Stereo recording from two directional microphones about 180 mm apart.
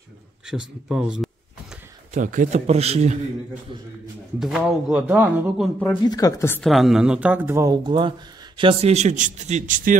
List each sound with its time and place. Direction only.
0.5 s speech: 5° right (ahead or behind)
2.1 s a man's voice: 45° right (ahead or behind)
4.4 s speech: centre (ahead or behind)
6.0 s speech: 20° left (ahead or behind)
6.6 s a man's voice: centre (ahead or behind); by 9.9 s 45° right (ahead or behind)